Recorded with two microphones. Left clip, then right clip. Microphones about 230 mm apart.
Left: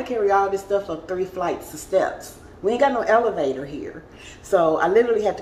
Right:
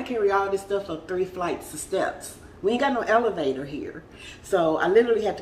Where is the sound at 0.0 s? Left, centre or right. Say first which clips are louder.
Left 4 dB; centre.